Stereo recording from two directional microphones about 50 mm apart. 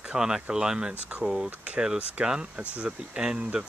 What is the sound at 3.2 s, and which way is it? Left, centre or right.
Speech, centre.